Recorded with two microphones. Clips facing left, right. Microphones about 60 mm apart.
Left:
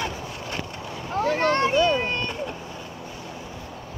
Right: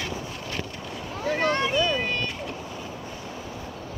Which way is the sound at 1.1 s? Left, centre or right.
Left.